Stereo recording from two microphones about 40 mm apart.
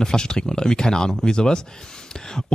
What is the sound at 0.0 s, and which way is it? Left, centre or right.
Speech, centre.